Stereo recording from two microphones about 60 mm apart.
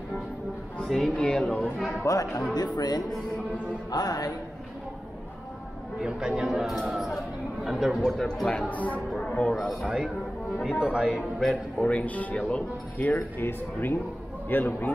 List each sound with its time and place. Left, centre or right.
0.8 s speech: centre
2.0 s speech: left
2.6 s speech: left
5.9 s speech: centre
8.2 s speech: centre
8.5 s speech: left
9.1 s music: centre
9.8 s speech: centre
11.4 s speech: centre
13.4 s speech: left